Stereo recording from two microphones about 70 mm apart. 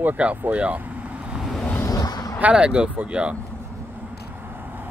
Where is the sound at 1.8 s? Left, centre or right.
Left.